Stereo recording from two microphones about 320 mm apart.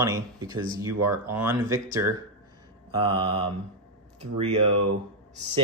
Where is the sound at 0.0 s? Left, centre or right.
Centre.